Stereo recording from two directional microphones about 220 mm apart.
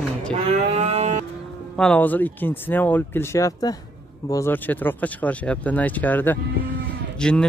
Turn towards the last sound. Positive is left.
turn(degrees=5)  # may be behind; listen again after turning